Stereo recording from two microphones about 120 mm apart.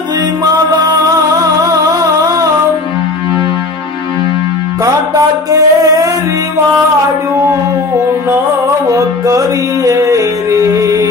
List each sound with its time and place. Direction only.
1.7 s a sound: 30° right (ahead or behind)
4.8 s music: 30° right (ahead or behind)
8.8 s music: 30° right (ahead or behind)